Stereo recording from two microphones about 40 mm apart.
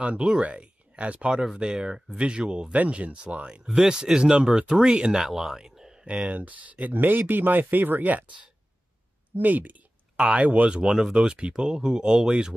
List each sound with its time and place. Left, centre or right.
0.2 s speech: right
1.3 s speech: centre
1.6 s speech: right
2.2 s speech: right
3.6 s speech: centre
5.2 s speech: centre
5.6 s a sound: centre
6.0 s speech: right
7.0 s speech: right
10.1 s speech: right
10.7 s speech: right